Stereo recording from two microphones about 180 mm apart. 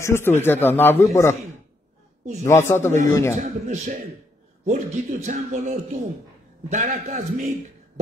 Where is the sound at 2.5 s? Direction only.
15° left (ahead or behind).